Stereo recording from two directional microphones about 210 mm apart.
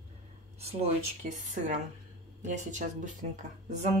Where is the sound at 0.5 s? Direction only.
30° right (ahead or behind).